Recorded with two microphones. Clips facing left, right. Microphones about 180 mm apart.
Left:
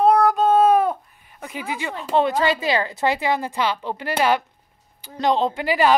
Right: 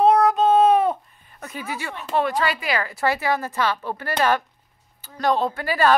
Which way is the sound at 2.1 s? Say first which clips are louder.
Left 3 dB; 25° left (ahead or behind).